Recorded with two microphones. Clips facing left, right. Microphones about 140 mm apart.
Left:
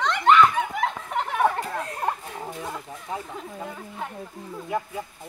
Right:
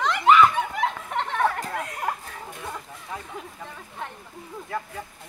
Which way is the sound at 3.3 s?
5° left (ahead or behind).